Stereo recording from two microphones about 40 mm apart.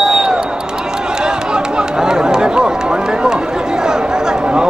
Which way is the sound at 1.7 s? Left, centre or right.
Centre.